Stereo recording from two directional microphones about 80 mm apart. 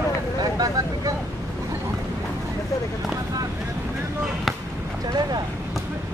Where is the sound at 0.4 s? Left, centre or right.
Right.